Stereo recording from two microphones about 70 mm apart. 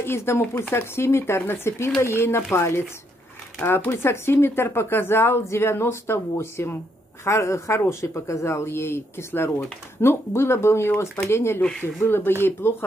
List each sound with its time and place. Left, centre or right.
0.0 s speech: left